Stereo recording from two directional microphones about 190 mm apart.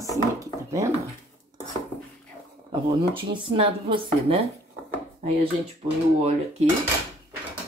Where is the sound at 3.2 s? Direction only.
25° right (ahead or behind).